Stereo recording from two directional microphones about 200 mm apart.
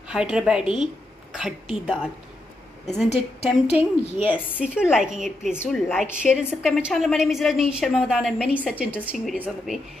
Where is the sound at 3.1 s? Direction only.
30° left (ahead or behind).